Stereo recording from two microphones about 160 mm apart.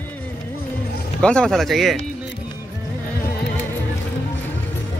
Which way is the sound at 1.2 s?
5° left (ahead or behind).